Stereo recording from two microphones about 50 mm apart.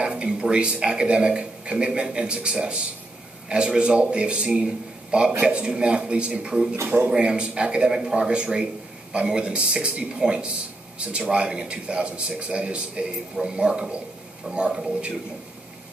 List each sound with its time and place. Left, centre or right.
0.0 s a man's voice: right